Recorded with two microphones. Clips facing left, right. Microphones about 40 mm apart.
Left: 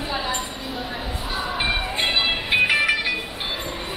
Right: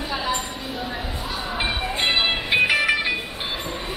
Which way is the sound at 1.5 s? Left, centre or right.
Centre.